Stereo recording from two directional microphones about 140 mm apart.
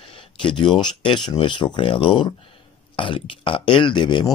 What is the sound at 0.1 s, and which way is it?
Speech, 35° left (ahead or behind).